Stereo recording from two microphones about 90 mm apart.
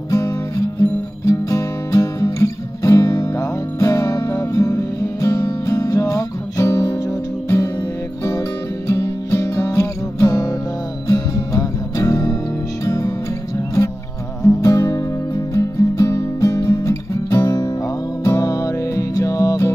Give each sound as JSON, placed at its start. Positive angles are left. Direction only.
{"t": 0.1, "sound": "music", "side_deg": 35}
{"t": 8.8, "sound": "music", "side_deg": 35}
{"t": 14.4, "sound": "music", "side_deg": 35}